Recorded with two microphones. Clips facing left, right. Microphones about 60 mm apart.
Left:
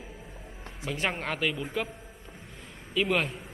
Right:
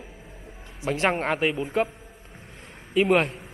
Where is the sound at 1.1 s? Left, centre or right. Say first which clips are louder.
Right 6 dB; right.